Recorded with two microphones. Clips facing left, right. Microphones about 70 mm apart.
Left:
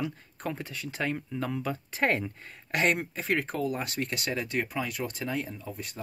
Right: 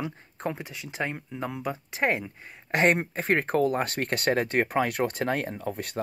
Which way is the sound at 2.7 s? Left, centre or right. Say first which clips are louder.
Right 4 dB; right.